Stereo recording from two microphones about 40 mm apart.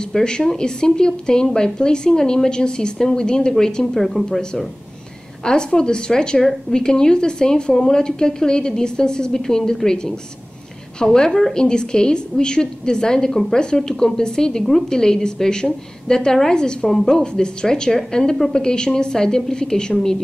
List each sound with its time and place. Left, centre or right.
0.1 s speech: centre
5.4 s a woman's voice: centre
11.1 s a woman's voice: centre